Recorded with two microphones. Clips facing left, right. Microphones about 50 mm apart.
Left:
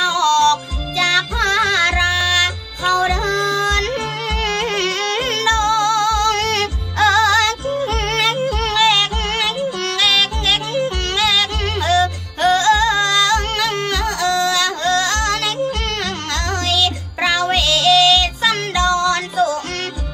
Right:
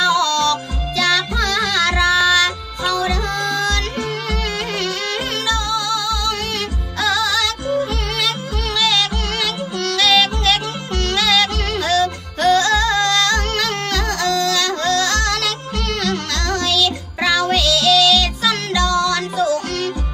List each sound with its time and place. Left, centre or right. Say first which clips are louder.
0.0 s music: left 2 dB; left
4.5 s music: left 3 dB; left
7.0 s music: left 5 dB; left
8.2 s music: left 5 dB; left
10.1 s music: right 2 dB; centre; by 19.2 s left